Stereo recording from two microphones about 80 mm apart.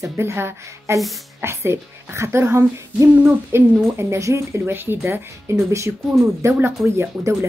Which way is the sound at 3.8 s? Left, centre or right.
Right.